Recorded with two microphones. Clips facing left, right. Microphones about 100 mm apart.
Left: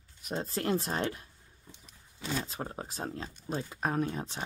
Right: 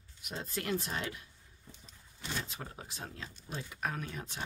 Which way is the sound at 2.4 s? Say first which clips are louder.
Left 7 dB; 40° left (ahead or behind).